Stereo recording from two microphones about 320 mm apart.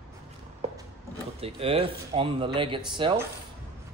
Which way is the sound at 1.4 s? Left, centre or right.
Centre.